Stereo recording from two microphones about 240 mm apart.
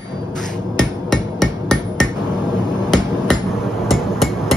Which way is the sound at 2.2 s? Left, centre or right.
Centre.